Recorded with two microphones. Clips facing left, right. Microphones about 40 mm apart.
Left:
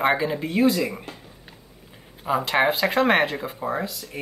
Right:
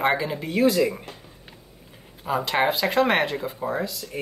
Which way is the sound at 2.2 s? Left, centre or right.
Centre.